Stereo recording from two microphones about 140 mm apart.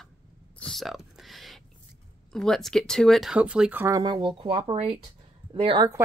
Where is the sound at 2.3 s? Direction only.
5° left (ahead or behind).